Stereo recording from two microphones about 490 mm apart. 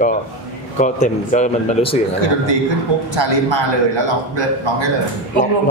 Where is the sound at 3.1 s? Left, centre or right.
Right.